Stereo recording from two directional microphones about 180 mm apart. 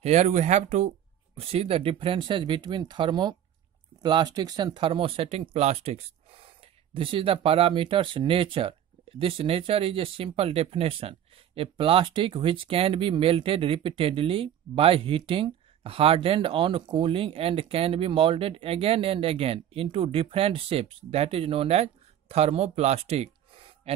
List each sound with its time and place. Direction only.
0.0 s speech: 40° right (ahead or behind)